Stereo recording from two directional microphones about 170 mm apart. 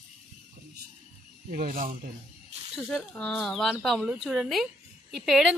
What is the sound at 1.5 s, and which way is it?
Speech, 55° right (ahead or behind).